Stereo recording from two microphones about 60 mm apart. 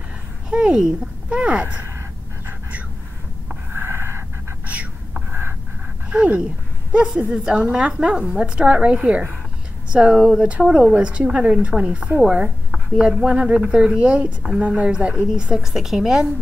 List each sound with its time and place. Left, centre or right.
0.5 s speech: centre
3.7 s a sound: right
6.0 s a woman's voice: right; by 16.3 s centre